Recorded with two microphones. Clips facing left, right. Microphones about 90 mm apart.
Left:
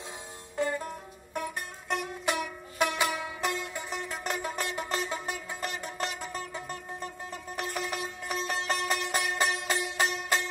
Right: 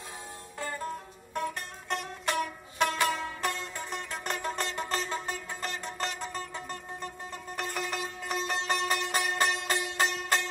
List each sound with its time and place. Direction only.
0.6 s music: 20° left (ahead or behind)
1.3 s music: 10° left (ahead or behind)